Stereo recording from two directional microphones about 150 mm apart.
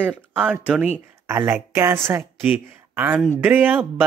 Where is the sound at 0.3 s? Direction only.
10° right (ahead or behind).